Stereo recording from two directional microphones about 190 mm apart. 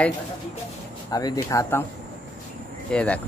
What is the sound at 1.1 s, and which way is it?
Speech, 20° left (ahead or behind).